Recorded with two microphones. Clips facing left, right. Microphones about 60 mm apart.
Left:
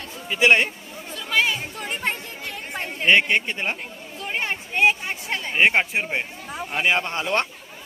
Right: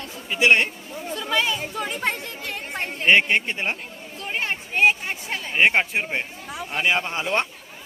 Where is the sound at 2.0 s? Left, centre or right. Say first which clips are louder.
Right 1 dB; right.